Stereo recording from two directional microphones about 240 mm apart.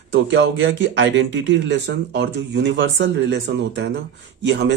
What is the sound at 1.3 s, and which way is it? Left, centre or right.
Speech, right.